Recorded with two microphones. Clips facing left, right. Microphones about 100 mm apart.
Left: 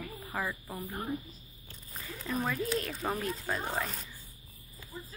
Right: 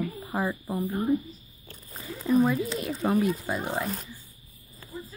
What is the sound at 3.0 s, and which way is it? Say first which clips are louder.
Speech: right 9 dB; 10° right (ahead or behind).